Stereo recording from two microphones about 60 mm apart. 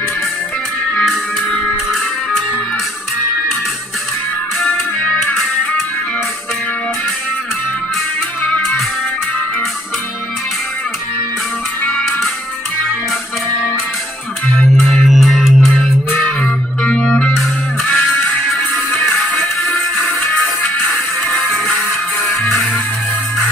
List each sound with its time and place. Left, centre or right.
0.9 s music: centre
4.6 s music: left
15.0 s music: centre
16.1 s music: left
16.8 s music: centre
17.8 s music: left
21.3 s music: left